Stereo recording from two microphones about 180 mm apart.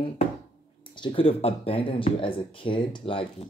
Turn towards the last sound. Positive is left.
turn(degrees=30)  # may be behind; listen again after turning